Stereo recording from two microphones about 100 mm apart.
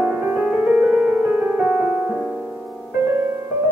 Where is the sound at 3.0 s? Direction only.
25° right (ahead or behind).